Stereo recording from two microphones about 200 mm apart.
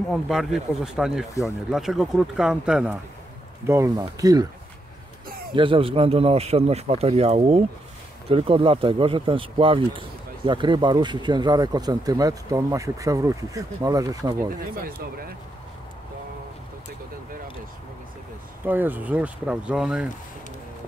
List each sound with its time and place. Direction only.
0.1 s speech: centre (ahead or behind)
3.6 s speech: 15° right (ahead or behind)
5.5 s speech: 25° right (ahead or behind)
18.7 s speech: 10° right (ahead or behind)